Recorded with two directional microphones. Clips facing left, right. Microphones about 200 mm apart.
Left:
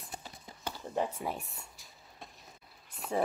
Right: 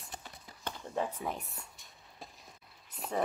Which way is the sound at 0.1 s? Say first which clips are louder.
Left 2 dB; 25° left (ahead or behind).